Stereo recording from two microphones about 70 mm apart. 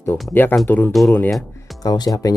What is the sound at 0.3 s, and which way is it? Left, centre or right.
Speech, left.